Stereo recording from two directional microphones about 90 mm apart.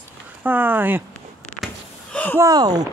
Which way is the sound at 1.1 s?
10° left (ahead or behind).